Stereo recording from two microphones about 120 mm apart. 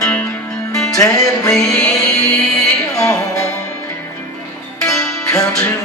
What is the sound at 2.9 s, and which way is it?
Music, 25° left (ahead or behind).